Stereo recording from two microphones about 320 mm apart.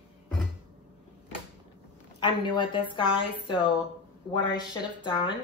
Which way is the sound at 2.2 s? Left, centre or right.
Centre.